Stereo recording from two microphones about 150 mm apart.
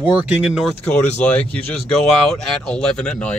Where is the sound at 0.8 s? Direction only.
10° left (ahead or behind).